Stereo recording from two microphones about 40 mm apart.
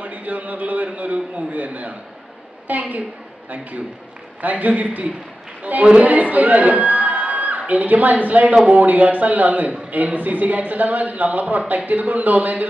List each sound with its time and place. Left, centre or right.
0.0 s a sound: right
1.5 s a man's voice: right
4.4 s a man's voice: right